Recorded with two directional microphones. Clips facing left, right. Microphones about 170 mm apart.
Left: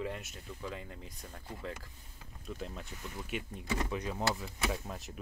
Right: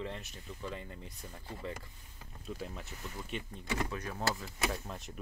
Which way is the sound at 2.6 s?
5° right (ahead or behind).